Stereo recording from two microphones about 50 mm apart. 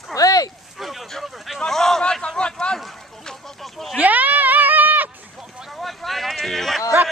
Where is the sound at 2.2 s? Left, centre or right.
Centre.